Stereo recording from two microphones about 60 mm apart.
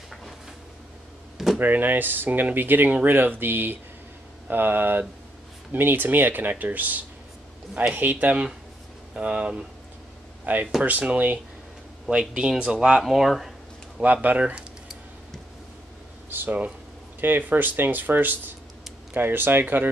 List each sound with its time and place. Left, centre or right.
1.6 s speech: right
12.1 s speech: centre
13.0 s speech: centre
14.0 s speech: right
16.3 s speech: right